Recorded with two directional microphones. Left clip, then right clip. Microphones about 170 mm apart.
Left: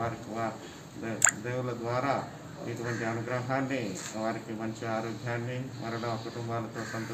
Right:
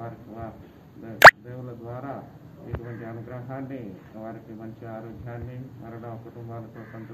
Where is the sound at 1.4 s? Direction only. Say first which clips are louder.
Left 6 dB; 20° left (ahead or behind).